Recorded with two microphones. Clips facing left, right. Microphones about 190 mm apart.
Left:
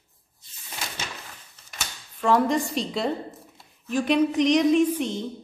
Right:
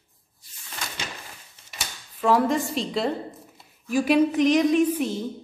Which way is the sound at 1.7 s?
5° right (ahead or behind).